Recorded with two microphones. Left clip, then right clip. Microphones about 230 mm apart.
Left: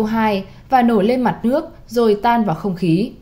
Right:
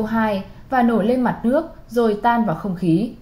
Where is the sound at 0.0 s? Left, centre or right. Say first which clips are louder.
Left 3 dB; left.